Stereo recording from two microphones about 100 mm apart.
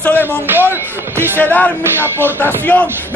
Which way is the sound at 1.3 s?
15° left (ahead or behind).